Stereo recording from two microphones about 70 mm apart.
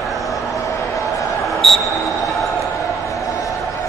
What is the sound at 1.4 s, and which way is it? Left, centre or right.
Basketball bounce, centre.